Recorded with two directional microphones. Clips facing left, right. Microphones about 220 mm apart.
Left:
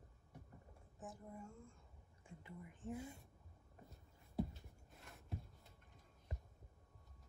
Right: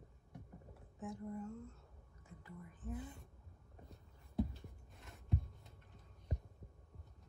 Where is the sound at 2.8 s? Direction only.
25° left (ahead or behind).